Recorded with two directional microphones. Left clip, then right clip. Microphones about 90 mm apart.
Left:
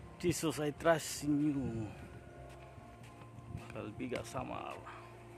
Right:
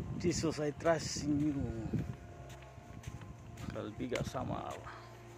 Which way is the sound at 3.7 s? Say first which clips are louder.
Right 2 dB; 10° right (ahead or behind).